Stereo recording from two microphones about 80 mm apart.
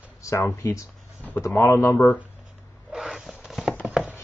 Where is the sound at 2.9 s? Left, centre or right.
Centre.